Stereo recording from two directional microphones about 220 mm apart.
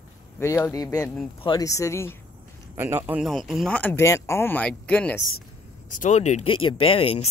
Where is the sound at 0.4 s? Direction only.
15° left (ahead or behind).